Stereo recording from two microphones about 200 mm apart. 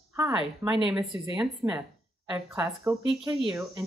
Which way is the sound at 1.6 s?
15° right (ahead or behind).